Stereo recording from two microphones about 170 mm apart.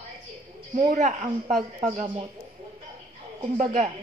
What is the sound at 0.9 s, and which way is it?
A woman's voice, 45° right (ahead or behind).